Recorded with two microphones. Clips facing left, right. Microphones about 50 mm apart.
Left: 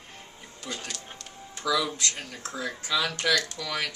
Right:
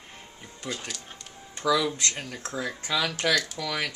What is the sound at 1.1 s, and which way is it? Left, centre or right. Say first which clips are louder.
Music: left 1 dB; centre.